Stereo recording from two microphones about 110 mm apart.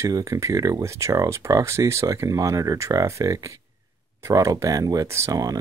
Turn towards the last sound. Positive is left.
turn(degrees=-30)  # may be behind; listen again after turning